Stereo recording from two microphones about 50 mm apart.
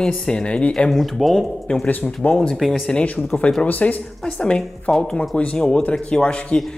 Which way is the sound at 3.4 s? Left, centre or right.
Centre.